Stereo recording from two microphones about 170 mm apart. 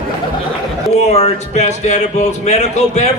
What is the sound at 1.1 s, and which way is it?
A man's voice, 40° left (ahead or behind).